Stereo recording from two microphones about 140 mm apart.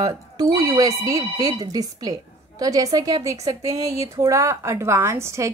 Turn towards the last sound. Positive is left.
turn(degrees=-20)  # may be behind; listen again after turning